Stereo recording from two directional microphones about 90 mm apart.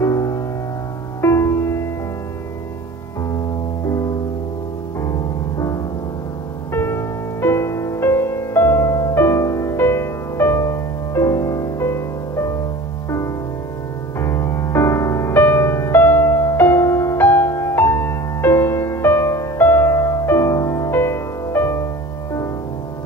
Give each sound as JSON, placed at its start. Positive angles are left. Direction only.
{"t": 0.0, "sound": "music", "side_deg": 35}
{"t": 3.8, "sound": "music", "side_deg": 35}
{"t": 6.7, "sound": "music", "side_deg": 25}
{"t": 14.2, "sound": "music", "side_deg": 30}